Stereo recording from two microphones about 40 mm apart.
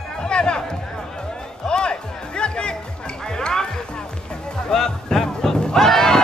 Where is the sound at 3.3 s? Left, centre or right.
Centre.